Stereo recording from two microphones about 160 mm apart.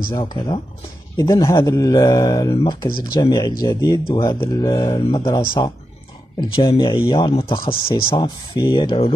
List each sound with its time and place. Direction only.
0.1 s speech: 25° left (ahead or behind)
6.5 s speech: 30° left (ahead or behind)